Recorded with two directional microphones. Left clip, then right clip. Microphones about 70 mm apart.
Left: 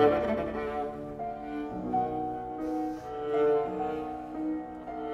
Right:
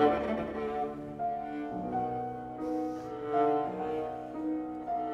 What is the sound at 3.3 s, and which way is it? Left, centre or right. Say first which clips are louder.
Music: left 2 dB; left.